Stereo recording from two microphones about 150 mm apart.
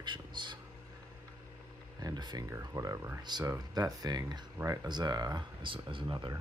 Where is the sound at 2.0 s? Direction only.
25° right (ahead or behind).